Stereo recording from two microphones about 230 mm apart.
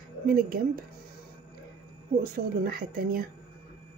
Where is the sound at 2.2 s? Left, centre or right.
Right.